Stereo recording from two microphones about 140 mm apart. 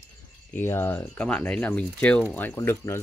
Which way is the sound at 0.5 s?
15° left (ahead or behind).